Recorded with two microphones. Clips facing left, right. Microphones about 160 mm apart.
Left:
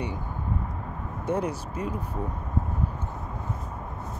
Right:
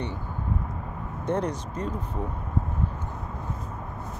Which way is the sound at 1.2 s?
10° left (ahead or behind).